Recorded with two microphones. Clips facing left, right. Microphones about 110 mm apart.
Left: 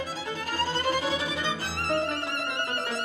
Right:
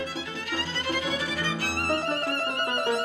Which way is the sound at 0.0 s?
40° left (ahead or behind).